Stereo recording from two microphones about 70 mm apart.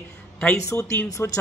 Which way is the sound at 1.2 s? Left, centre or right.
Left.